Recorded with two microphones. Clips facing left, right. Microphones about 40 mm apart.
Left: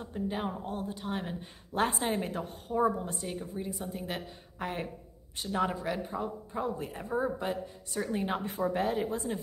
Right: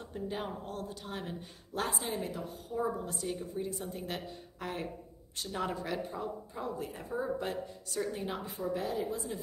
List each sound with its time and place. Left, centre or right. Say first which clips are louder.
0.0 s speech: left 4 dB; centre
1.8 s a woman's voice: left 5 dB; left
2.7 s a woman's voice: left 6 dB; left
3.2 s speech: right 1 dB; centre
3.7 s speech: left 2 dB; centre
4.6 s speech: left 4 dB; left
5.4 s speech: left 5 dB; centre
7.4 s speech: left 3 dB; centre
8.1 s a woman's voice: left 6 dB; left
8.5 s a woman's voice: left 5 dB; left